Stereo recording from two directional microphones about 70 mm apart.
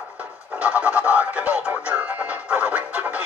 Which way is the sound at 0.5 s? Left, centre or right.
Centre.